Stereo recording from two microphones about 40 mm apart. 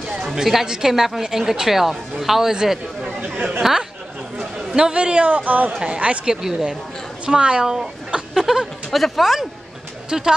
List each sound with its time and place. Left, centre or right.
0.4 s speech: centre
3.6 s speech: centre
4.4 s a man's voice: centre; by 5.7 s right
5.8 s speech: right
6.4 s speech: centre
7.6 s speech: centre
8.4 s a sound: centre
9.0 s speech: centre